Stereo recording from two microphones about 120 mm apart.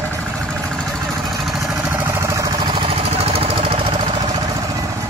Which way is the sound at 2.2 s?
25° right (ahead or behind).